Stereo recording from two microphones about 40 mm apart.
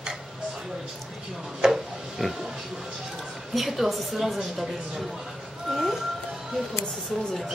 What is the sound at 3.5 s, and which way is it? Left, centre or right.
A woman's voice, centre.